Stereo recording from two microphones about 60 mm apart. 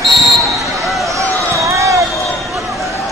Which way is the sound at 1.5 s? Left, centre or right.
Right.